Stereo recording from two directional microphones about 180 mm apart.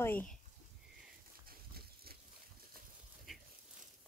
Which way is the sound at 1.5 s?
60° right (ahead or behind).